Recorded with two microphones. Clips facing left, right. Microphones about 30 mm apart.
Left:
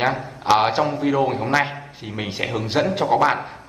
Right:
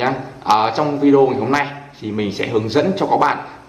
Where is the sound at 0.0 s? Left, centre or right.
Centre.